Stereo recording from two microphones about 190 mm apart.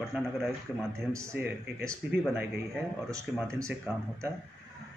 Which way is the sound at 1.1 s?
15° right (ahead or behind).